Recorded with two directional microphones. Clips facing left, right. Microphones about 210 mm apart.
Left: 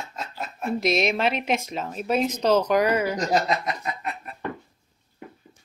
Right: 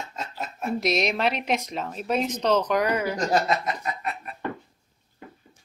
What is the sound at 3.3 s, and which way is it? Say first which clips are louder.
Chuckle: right 2 dB; 20° left (ahead or behind).